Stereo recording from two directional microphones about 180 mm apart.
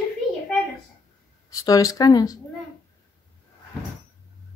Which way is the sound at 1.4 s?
20° left (ahead or behind).